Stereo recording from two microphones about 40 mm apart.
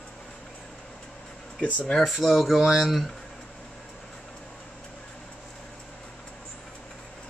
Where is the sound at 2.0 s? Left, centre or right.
Centre.